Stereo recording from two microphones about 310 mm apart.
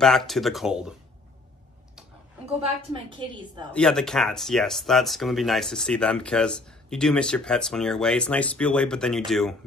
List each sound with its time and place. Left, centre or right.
0.0 s speech: centre
2.6 s a woman's voice: centre
3.7 s speech: centre